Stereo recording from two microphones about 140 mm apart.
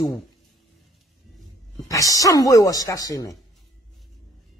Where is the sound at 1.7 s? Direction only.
25° left (ahead or behind).